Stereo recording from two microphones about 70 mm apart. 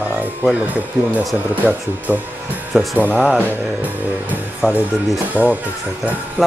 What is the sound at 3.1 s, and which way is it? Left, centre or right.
Speech, centre.